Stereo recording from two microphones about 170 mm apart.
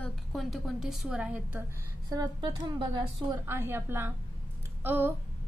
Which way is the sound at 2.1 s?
25° right (ahead or behind).